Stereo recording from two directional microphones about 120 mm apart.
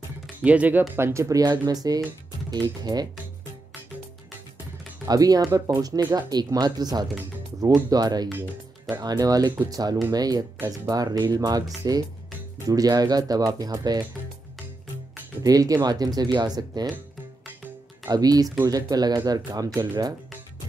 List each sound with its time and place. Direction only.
0.4 s speech: 10° right (ahead or behind); by 3.1 s 35° right (ahead or behind)
5.0 s speech: 30° right (ahead or behind)
8.3 s speech: 15° right (ahead or behind)
8.9 s speech: 35° right (ahead or behind)
15.4 s speech: 30° right (ahead or behind)
18.0 s speech: 30° right (ahead or behind)